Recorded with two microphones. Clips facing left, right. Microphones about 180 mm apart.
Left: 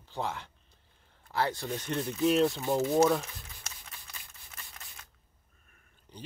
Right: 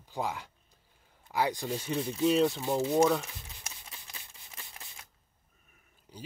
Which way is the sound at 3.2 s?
15° right (ahead or behind).